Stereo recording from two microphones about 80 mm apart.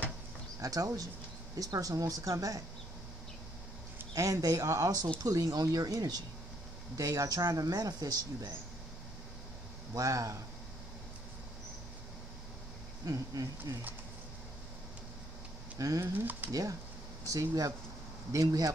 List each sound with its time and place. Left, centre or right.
0.6 s speech: right
4.1 s speech: right
9.9 s speech: right
13.0 s speech: right
15.8 s speech: right
16.2 s speech: right
17.3 s speech: right